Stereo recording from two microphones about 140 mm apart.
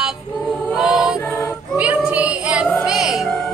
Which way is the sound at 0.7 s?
5° right (ahead or behind).